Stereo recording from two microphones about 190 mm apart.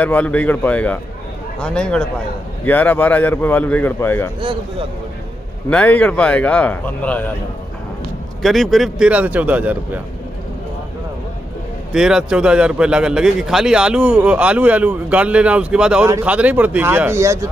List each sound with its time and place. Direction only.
0.0 s a man's voice: 5° left (ahead or behind)
4.4 s speech: 25° right (ahead or behind)
5.7 s a man's voice: 5° left (ahead or behind)
8.4 s a man's voice: centre (ahead or behind)
11.9 s a man's voice: 5° right (ahead or behind)